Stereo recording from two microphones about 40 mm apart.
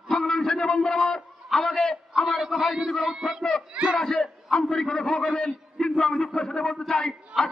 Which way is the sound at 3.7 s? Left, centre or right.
Right.